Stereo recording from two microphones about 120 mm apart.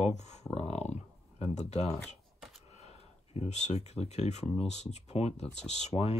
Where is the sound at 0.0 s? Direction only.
70° left (ahead or behind).